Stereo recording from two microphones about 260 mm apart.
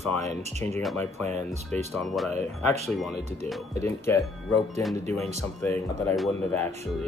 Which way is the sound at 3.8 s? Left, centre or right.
Centre.